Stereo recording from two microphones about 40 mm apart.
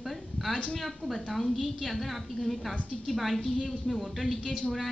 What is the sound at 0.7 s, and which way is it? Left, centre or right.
A woman's voice, centre.